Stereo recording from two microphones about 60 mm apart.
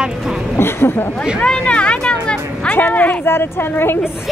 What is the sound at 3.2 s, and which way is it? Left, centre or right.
Speech, left.